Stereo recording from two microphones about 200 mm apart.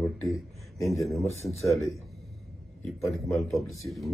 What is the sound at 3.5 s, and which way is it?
Speech, centre (ahead or behind).